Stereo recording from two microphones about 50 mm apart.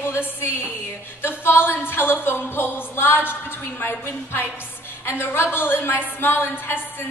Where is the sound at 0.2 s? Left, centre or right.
Left.